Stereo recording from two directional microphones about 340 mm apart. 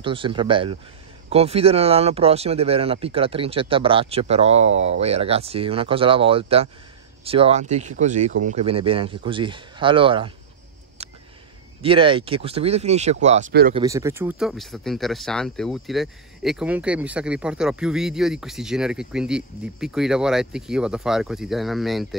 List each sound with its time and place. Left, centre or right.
0.0 s speech: centre
11.0 s a sound: centre
11.8 s speech: centre
13.7 s speech: centre